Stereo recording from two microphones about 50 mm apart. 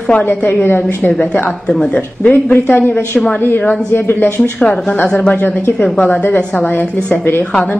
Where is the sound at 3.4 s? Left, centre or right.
Left.